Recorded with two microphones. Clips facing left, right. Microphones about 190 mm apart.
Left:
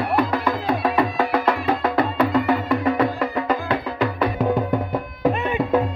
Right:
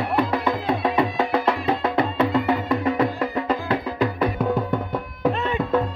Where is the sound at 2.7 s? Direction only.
30° right (ahead or behind).